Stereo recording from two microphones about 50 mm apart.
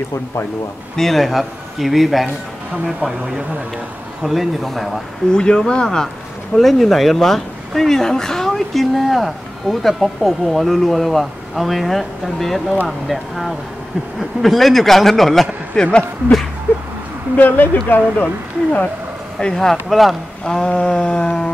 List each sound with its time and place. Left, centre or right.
0.9 s speech: centre
4.2 s speech: centre
5.3 s mantra: centre
6.5 s speech: centre
15.7 s speech: centre
17.4 s speech: left
18.2 s speech: left
19.4 s speech: centre
20.4 s mantra: centre